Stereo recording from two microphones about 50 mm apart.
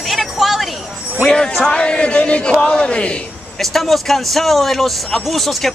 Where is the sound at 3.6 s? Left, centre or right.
Centre.